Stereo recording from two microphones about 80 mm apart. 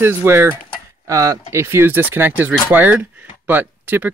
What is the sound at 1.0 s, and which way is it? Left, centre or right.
Speech, right.